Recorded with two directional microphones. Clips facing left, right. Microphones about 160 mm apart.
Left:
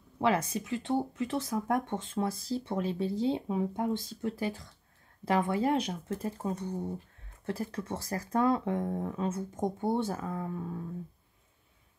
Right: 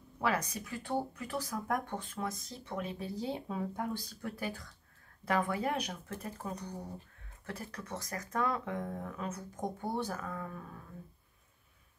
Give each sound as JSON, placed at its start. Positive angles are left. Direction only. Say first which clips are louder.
{"t": 0.2, "sound": "speech", "louder": "left 5 dB", "side_deg": 25}